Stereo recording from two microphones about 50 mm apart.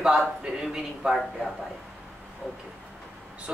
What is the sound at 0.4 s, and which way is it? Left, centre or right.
Speech, centre.